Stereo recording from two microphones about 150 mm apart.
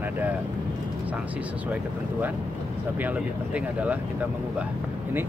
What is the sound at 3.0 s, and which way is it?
Speech, 10° right (ahead or behind).